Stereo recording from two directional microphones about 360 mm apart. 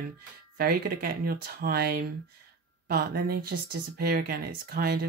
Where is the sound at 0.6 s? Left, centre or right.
Right.